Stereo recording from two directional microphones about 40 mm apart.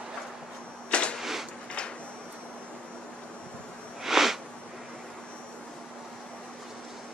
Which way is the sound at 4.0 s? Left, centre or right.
Centre.